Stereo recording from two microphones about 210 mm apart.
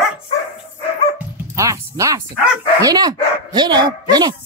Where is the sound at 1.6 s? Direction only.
15° right (ahead or behind).